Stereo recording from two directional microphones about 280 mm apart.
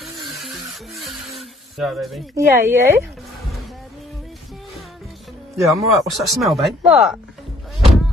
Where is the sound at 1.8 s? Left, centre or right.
Centre.